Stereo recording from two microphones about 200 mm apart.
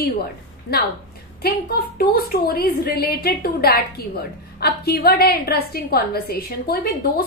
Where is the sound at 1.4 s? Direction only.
50° left (ahead or behind).